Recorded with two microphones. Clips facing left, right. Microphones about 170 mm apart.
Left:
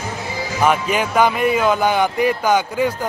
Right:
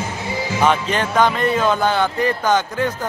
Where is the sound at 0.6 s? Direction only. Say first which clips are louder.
Left 1 dB; 10° left (ahead or behind).